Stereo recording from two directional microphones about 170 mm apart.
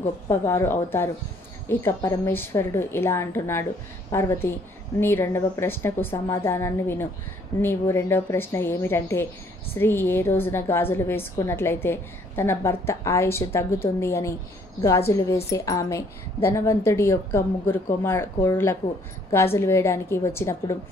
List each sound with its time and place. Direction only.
0.3 s a woman's voice: 15° left (ahead or behind)